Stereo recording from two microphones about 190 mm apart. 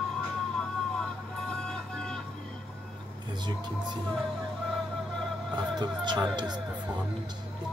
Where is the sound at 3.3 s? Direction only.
25° right (ahead or behind).